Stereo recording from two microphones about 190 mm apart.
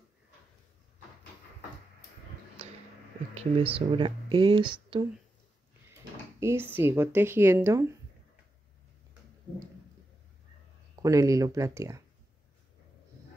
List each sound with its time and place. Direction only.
3.3 s speech: 30° right (ahead or behind)
6.4 s speech: 10° right (ahead or behind)
11.0 s speech: 15° right (ahead or behind)